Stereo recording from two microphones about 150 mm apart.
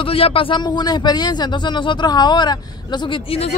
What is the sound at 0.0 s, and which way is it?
Speech, 40° left (ahead or behind).